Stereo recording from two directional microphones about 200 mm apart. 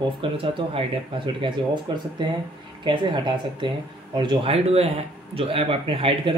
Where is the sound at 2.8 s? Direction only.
25° right (ahead or behind).